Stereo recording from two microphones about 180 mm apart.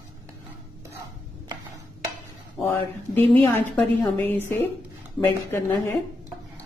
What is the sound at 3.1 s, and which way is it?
A woman's voice, 10° left (ahead or behind).